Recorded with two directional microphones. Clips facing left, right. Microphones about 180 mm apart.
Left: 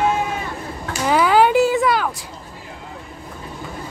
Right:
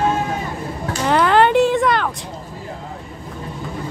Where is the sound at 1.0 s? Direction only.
5° left (ahead or behind).